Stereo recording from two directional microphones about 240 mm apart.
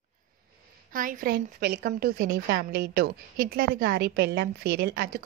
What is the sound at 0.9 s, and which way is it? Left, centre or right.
A woman's voice, right.